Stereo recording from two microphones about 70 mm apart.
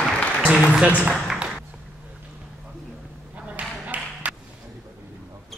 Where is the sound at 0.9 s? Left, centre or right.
Centre.